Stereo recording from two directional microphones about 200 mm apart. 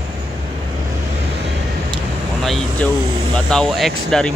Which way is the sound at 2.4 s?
Centre (ahead or behind).